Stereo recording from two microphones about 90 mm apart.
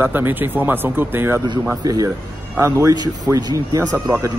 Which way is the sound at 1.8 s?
45° right (ahead or behind).